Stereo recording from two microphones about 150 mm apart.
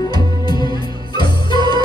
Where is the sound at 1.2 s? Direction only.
30° left (ahead or behind).